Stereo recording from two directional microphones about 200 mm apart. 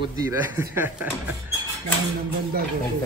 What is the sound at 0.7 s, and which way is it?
Speech, 10° right (ahead or behind).